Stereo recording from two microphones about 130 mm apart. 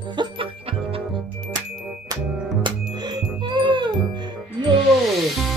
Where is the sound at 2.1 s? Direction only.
25° right (ahead or behind).